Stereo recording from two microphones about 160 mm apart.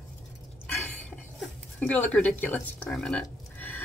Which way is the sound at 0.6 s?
10° left (ahead or behind).